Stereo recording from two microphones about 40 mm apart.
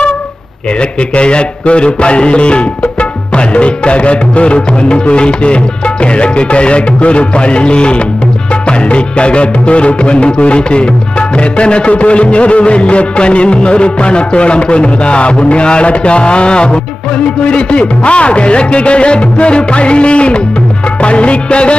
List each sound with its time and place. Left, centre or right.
0.7 s music: left